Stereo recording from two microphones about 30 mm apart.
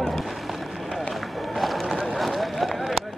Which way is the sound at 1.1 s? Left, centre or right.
Centre.